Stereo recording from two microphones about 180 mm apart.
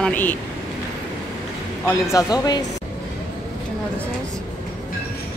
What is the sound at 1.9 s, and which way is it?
Speech, 15° left (ahead or behind).